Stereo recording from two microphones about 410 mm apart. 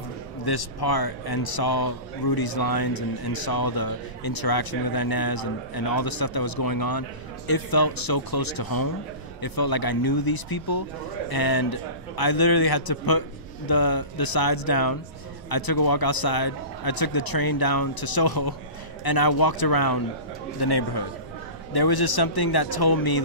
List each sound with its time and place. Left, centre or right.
0.5 s speech: left